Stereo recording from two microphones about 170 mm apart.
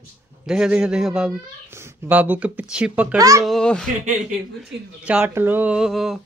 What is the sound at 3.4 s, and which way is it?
Speech, 5° left (ahead or behind).